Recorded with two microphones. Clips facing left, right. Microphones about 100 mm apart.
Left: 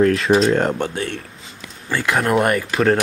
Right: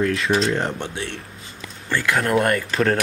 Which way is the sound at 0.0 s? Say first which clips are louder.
Left 5 dB; 35° left (ahead or behind).